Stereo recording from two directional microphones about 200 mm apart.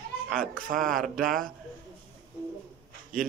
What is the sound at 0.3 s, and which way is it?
Speech, 45° right (ahead or behind).